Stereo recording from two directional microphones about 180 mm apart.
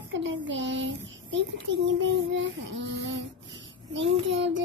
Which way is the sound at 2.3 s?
90° right.